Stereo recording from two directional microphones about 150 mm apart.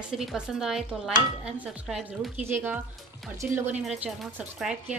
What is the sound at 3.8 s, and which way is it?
Speech, centre (ahead or behind).